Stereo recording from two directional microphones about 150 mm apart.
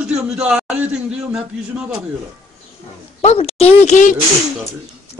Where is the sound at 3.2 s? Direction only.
45° left (ahead or behind).